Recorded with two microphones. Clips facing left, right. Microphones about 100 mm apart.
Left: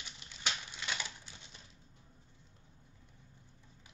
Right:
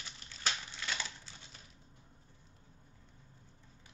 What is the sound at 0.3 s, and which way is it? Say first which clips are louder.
Crushing: right 1 dB; 15° left (ahead or behind).